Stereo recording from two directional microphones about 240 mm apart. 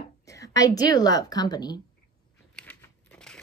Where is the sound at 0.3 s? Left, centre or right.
Centre.